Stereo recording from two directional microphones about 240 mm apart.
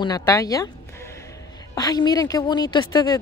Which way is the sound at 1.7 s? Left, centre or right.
Centre.